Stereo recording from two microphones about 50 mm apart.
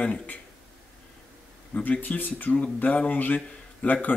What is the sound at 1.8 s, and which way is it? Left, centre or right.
Speech, left.